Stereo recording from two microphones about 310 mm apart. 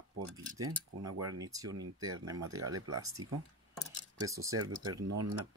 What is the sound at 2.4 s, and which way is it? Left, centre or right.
Speech, right.